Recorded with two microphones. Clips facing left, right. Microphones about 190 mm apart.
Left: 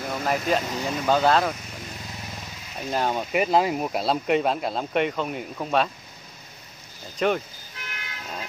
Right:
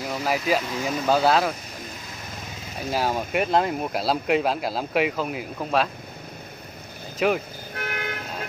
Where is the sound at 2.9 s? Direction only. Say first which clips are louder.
Even; 5° right (ahead or behind).